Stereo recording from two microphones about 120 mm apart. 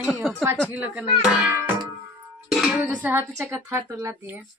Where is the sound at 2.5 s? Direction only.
Centre (ahead or behind).